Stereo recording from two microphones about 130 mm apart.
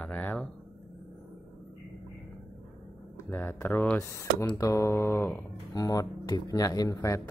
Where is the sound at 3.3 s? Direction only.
15° left (ahead or behind).